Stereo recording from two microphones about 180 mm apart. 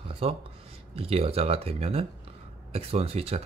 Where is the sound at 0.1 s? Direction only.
30° right (ahead or behind).